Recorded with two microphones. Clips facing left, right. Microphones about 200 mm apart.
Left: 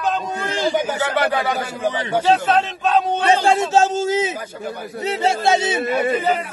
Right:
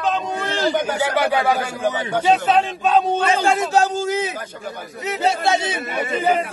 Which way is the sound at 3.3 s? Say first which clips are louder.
Left 5 dB; 30° left (ahead or behind).